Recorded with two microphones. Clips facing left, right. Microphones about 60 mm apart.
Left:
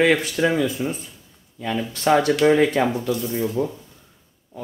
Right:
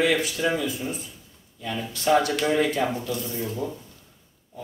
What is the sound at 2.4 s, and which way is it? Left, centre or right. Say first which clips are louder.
Speech: left 6 dB; left.